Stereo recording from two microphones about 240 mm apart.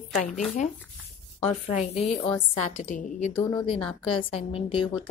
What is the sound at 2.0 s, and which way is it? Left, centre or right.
Speech, centre.